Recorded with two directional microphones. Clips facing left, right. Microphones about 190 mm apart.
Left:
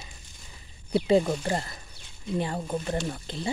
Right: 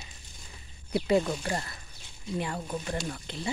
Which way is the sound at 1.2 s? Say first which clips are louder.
Left 4 dB; 30° left (ahead or behind).